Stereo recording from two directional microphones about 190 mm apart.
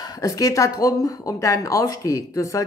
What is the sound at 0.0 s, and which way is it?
Speech, 20° left (ahead or behind).